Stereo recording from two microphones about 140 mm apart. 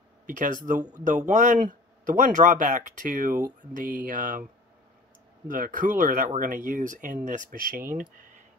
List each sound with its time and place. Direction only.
0.3 s speech: 70° right (ahead or behind)
5.5 s speech: 70° right (ahead or behind)